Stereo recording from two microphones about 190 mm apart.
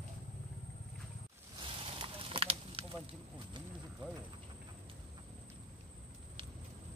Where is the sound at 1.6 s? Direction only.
25° right (ahead or behind).